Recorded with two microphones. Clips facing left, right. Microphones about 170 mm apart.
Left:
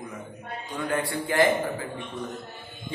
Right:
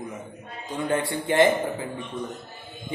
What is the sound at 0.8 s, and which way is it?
Speech, 25° right (ahead or behind).